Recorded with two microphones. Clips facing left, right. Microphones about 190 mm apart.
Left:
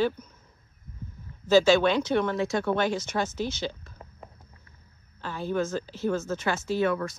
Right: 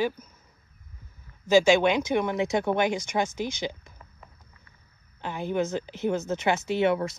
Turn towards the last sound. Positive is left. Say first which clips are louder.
# right 2 dB
turn(degrees=-25)  # may be behind; listen again after turning